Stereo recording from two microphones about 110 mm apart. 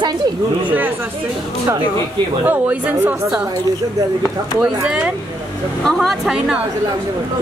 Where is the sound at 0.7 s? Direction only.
15° right (ahead or behind).